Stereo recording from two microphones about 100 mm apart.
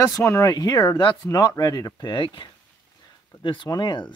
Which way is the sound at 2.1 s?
55° left (ahead or behind).